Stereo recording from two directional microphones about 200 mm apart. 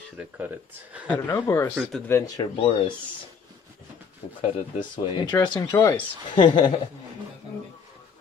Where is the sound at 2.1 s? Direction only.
25° left (ahead or behind).